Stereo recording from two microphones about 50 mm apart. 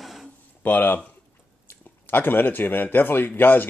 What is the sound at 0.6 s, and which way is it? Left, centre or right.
Speech, left.